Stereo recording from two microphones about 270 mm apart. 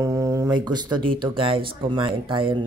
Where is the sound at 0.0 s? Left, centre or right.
Centre.